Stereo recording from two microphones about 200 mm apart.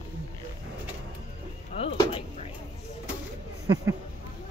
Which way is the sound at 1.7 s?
25° left (ahead or behind).